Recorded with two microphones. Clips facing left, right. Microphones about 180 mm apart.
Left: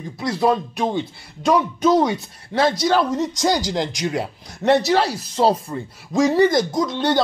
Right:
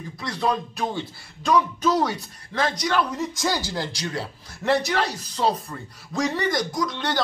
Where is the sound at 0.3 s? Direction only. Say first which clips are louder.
Left 6 dB; 30° left (ahead or behind).